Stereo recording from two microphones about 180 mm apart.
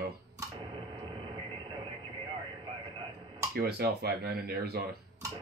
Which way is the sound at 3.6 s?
60° right (ahead or behind).